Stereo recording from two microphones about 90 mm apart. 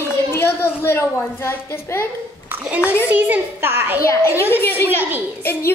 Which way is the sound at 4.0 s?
30° left (ahead or behind).